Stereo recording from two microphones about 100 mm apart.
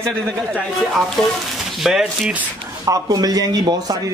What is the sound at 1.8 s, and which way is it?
Speech, 5° right (ahead or behind).